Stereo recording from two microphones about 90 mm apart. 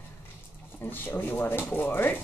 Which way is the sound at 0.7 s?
20° left (ahead or behind).